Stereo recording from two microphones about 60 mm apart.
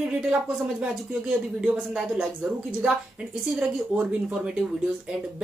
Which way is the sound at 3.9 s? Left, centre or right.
Right.